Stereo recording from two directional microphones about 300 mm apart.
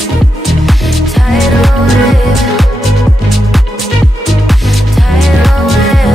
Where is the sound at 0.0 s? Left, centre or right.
Centre.